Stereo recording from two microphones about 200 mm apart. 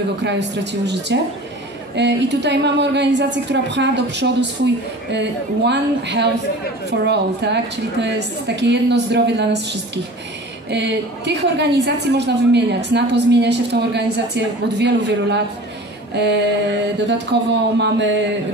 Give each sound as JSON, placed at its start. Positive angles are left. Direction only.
{"t": 0.2, "sound": "a woman's voice", "side_deg": -60}
{"t": 10.7, "sound": "a woman's voice", "side_deg": -60}